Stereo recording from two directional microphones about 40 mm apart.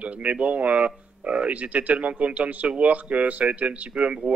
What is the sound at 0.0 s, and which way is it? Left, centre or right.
Speech, right.